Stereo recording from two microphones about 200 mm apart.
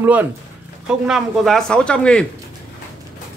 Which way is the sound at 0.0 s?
10° right (ahead or behind).